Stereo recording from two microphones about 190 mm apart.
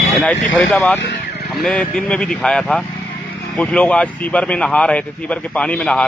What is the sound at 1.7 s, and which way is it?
A man's voice, 5° left (ahead or behind).